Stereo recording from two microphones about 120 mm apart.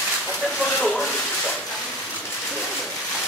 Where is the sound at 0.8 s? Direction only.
5° left (ahead or behind).